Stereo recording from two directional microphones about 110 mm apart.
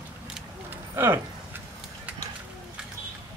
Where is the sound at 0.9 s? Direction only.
20° right (ahead or behind).